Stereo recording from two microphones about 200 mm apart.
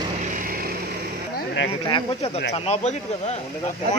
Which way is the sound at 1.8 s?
25° left (ahead or behind).